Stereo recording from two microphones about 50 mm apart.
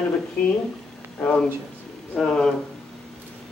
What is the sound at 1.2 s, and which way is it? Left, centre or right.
Speech, centre.